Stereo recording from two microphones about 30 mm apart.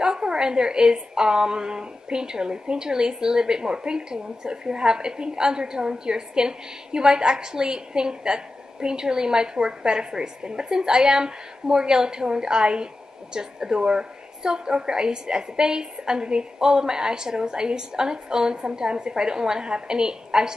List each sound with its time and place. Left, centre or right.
0.0 s a woman's voice: right